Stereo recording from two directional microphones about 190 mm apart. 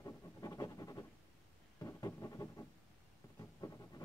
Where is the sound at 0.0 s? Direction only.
15° left (ahead or behind).